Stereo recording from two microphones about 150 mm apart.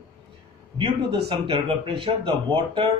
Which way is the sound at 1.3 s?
35° right (ahead or behind).